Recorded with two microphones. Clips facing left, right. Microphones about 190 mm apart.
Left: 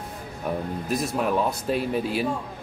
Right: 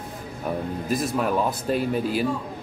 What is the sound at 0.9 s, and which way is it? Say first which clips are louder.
Speech: right 1 dB; centre (ahead or behind).